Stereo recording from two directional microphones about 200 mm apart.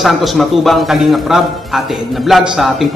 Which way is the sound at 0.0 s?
Centre (ahead or behind).